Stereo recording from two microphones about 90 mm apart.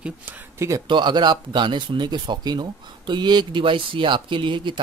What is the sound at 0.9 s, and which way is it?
Speech, 60° right (ahead or behind).